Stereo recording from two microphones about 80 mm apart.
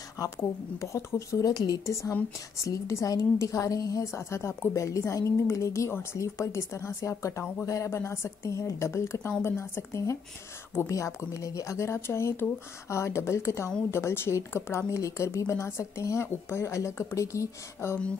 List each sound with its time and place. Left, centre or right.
0.4 s a woman's voice: left